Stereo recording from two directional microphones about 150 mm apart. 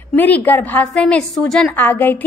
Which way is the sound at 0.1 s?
10° left (ahead or behind).